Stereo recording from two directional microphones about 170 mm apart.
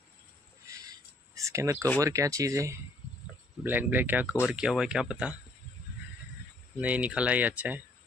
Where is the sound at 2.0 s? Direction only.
20° right (ahead or behind).